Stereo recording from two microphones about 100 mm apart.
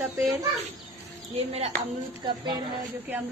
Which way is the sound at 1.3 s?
90° right.